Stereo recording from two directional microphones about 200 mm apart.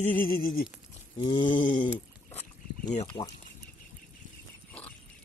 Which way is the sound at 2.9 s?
30° left (ahead or behind).